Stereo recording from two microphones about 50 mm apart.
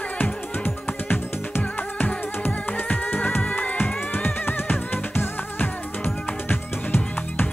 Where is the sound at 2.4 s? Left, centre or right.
Left.